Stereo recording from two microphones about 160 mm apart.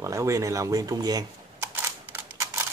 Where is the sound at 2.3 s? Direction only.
15° right (ahead or behind).